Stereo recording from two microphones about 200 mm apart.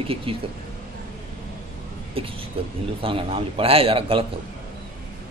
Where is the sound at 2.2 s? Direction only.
25° right (ahead or behind).